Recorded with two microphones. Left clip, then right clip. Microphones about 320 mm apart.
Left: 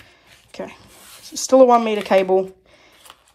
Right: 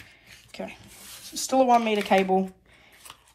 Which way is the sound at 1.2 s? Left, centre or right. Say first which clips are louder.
Left 10 dB; centre.